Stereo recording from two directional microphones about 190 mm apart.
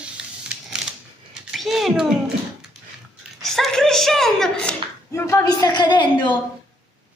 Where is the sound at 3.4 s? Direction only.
Centre (ahead or behind).